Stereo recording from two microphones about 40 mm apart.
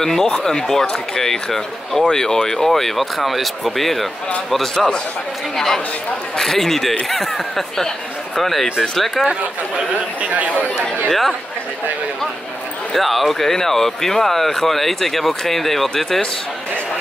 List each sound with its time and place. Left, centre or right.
0.0 s speech: centre
3.0 s speech: centre
4.7 s speech: centre
6.3 s speech: centre
10.2 s speech: right
11.1 s speech: centre
12.9 s speech: centre